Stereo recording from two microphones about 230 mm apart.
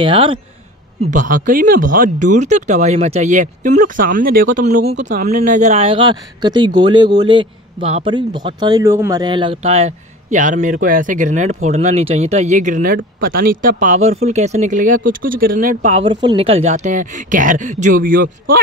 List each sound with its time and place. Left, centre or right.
0.0 s a man's voice: right
1.1 s speech: right